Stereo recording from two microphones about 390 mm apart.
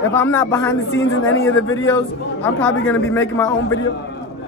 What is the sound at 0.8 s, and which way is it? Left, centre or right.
Speech, left.